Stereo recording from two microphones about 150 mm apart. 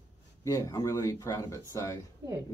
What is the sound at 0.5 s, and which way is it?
Speech, 25° left (ahead or behind).